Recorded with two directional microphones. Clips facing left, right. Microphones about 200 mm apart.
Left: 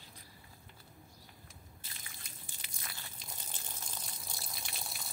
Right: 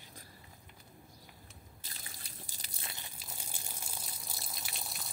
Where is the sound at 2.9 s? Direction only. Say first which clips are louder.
Right 1 dB; 20° right (ahead or behind).